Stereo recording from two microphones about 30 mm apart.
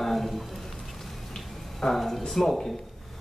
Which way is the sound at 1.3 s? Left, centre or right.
Centre.